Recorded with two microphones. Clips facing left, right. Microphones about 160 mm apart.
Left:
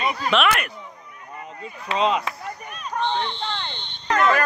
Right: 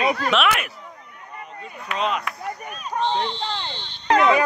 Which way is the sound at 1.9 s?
30° left (ahead or behind).